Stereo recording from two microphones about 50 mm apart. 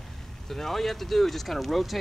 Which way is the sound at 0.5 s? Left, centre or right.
Centre.